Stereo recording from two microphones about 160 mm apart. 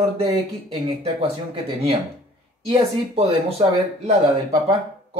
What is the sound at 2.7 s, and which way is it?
Speech, 40° right (ahead or behind).